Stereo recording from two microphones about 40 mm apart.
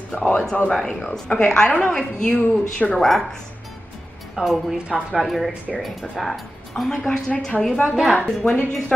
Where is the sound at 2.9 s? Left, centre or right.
Centre.